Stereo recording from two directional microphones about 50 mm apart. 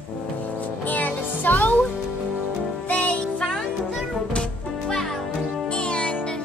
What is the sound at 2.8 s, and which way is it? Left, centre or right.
Music, left.